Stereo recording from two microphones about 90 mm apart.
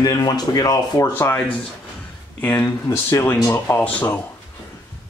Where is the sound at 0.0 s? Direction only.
50° left (ahead or behind).